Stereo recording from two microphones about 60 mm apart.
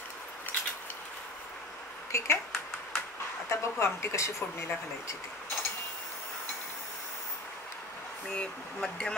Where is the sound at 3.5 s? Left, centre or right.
Left.